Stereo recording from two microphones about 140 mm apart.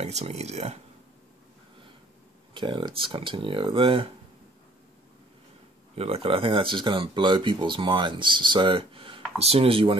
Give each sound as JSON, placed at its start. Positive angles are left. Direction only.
{"t": 0.0, "sound": "speech", "side_deg": -50}
{"t": 2.5, "sound": "speech", "side_deg": -35}
{"t": 5.9, "sound": "speech", "side_deg": -45}